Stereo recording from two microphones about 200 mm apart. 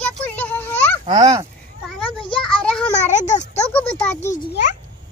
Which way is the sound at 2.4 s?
5° left (ahead or behind).